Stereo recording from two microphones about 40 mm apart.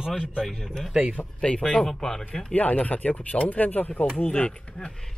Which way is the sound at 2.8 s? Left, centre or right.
Left.